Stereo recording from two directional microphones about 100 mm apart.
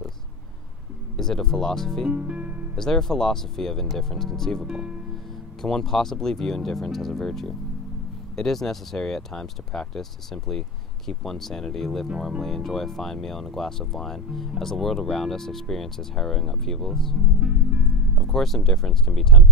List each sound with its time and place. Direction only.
1.1 s speech: 5° left (ahead or behind)
2.1 s music: 10° right (ahead or behind)
2.7 s speech: 5° left (ahead or behind)
4.6 s music: 10° right (ahead or behind)
5.6 s speech: 5° left (ahead or behind)